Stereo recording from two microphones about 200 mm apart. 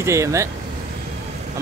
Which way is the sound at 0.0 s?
15° right (ahead or behind).